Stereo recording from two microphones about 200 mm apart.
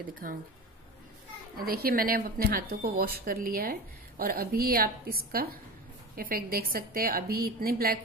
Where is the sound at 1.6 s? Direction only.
50° right (ahead or behind).